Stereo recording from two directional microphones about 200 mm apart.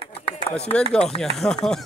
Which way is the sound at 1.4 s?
5° left (ahead or behind).